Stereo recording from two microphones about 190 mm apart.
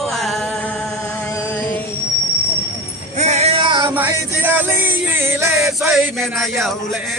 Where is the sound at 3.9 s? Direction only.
10° right (ahead or behind).